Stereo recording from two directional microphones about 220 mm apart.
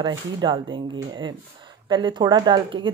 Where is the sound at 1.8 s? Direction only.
20° right (ahead or behind).